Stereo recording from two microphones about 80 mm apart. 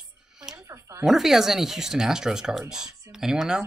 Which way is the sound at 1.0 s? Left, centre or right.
Centre.